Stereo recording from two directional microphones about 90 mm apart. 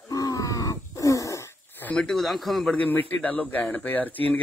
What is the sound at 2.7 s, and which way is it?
A man's voice, 20° left (ahead or behind).